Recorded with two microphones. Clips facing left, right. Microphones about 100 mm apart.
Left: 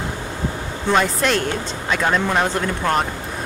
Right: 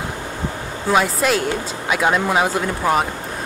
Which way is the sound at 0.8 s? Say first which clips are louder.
Right 1 dB; 5° right (ahead or behind).